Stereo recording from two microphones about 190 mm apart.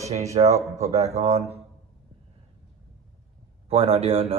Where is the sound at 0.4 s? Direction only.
25° right (ahead or behind).